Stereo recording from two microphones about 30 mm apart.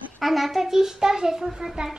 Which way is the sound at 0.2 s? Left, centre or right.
Centre.